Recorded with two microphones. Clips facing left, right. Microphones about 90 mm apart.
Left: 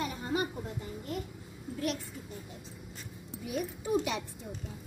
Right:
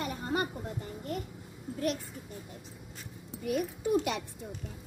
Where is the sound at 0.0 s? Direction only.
55° right (ahead or behind).